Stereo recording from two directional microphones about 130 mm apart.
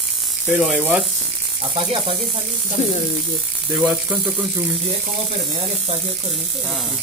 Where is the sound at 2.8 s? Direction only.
60° left (ahead or behind).